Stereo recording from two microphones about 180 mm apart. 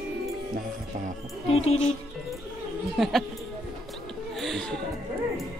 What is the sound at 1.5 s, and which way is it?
Music, 35° left (ahead or behind).